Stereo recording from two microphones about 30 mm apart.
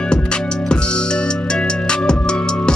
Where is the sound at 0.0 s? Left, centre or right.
Left.